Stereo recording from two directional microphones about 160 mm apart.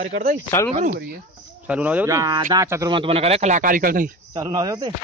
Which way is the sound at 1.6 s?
10° right (ahead or behind).